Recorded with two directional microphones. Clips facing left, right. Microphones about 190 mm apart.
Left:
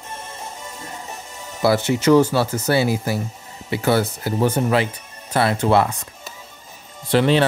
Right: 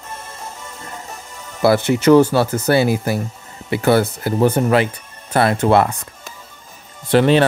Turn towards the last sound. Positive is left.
turn(degrees=-50)  # may be behind; listen again after turning